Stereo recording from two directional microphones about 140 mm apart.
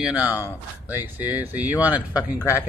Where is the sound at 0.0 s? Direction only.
10° right (ahead or behind).